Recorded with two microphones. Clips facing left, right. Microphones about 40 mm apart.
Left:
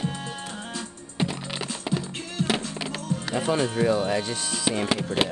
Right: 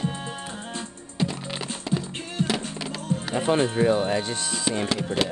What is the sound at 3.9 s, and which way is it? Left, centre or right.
Speech, right.